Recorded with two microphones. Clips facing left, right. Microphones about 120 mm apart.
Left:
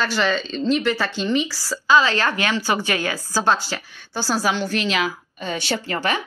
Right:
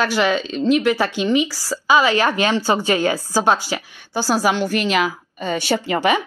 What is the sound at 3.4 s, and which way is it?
Speech, 10° right (ahead or behind).